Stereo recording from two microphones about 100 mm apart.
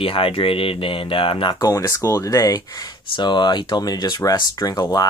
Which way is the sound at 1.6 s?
30° left (ahead or behind).